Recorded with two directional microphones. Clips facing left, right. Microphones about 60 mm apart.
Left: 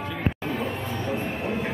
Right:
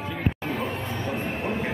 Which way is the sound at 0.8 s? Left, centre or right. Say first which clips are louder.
Left 1 dB; centre.